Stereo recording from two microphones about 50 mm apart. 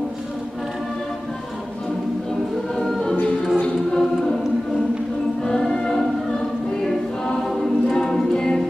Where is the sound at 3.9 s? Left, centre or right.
Centre.